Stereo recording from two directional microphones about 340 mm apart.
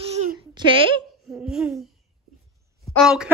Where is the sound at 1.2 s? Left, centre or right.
Centre.